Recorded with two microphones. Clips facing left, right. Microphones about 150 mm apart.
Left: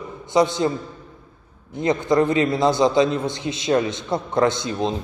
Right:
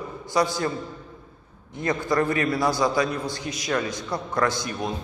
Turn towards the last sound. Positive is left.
turn(degrees=25)  # may be behind; listen again after turning